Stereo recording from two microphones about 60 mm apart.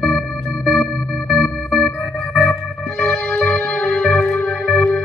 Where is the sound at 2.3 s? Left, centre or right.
Centre.